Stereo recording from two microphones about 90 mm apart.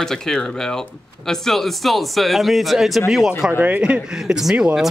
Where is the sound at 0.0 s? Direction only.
5° left (ahead or behind).